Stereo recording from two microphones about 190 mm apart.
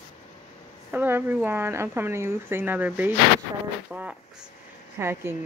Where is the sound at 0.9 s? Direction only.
10° right (ahead or behind).